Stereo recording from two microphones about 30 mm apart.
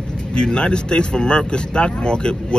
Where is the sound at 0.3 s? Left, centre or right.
Left.